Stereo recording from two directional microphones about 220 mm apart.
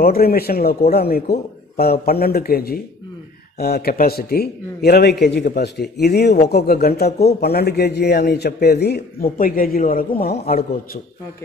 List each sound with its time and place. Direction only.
0.0 s a man's voice: 45° left (ahead or behind)